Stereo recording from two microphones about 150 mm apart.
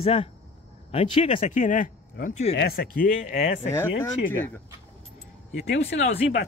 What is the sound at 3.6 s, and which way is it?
Speech, 15° left (ahead or behind).